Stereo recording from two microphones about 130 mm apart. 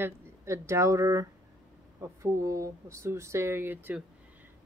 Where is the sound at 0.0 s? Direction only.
20° right (ahead or behind).